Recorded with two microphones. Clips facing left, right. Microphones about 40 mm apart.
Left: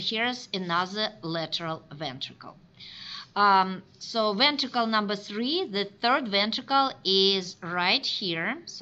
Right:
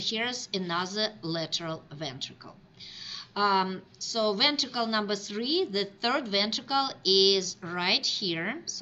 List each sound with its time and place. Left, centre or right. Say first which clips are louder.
0.0 s a woman's voice: left 3 dB; centre